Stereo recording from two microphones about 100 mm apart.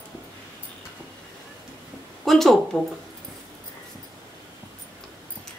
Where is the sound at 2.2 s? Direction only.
Centre (ahead or behind).